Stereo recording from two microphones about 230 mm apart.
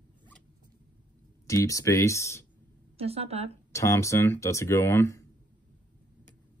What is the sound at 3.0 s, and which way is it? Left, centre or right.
Speech, right.